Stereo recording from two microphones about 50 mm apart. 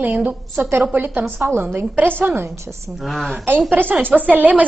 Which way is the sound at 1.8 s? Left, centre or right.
Right.